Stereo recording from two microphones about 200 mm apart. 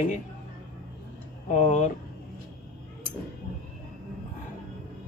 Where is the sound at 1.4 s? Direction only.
35° left (ahead or behind).